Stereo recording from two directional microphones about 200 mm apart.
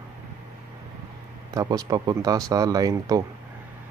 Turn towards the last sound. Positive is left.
turn(degrees=-20)  # may be behind; listen again after turning